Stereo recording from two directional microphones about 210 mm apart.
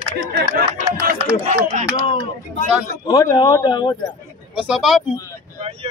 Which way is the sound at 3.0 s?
15° left (ahead or behind).